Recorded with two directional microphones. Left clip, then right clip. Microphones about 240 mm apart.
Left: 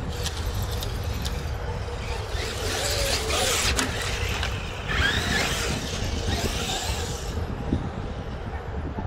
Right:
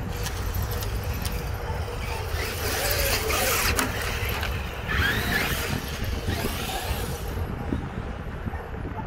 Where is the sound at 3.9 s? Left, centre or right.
Centre.